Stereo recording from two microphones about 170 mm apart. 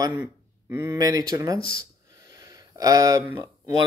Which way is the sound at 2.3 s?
20° right (ahead or behind).